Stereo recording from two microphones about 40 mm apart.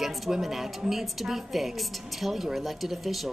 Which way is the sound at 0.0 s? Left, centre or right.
Centre.